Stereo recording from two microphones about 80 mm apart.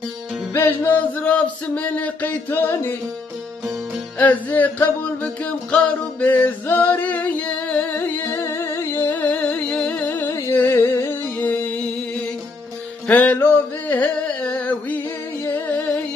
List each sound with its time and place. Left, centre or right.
0.5 s music: left
4.2 s music: left
8.5 s music: left; by 11.9 s centre
13.0 s music: centre